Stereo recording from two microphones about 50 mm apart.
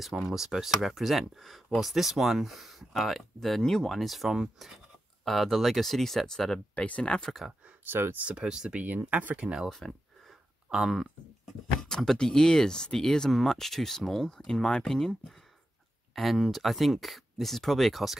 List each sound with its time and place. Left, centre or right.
0.3 s speech: centre
6.7 s speech: left
7.8 s speech: right
8.4 s speech: centre
8.7 s speech: right
9.7 s speech: centre
10.7 s speech: centre
11.9 s speech: centre
16.2 s speech: centre